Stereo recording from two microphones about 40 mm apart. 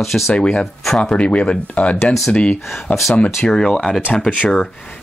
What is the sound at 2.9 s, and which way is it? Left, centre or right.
Speech, left.